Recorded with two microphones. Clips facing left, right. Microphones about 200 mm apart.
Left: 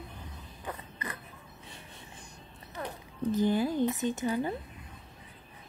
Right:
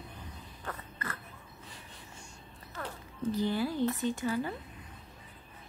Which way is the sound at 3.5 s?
20° left (ahead or behind).